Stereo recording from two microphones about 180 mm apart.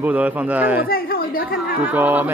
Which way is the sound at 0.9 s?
55° left (ahead or behind).